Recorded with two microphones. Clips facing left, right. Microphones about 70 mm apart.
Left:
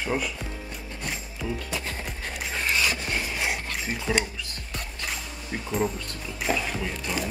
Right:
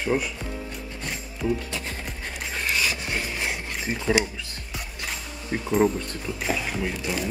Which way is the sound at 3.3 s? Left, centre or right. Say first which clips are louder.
Left 1 dB; centre.